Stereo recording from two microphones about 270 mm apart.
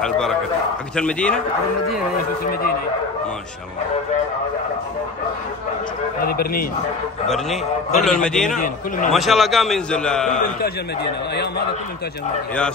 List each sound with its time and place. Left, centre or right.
0.0 s a man's voice: centre
6.2 s a man's voice: left
7.2 s a man's voice: centre
8.5 s a man's voice: left
9.1 s a man's voice: centre